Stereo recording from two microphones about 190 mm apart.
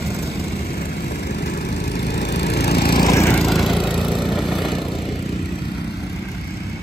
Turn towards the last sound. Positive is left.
turn(degrees=0)  # may be behind; listen again after turning